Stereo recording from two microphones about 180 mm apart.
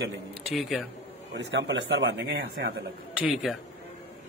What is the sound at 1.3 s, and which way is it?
Speech, 90° right.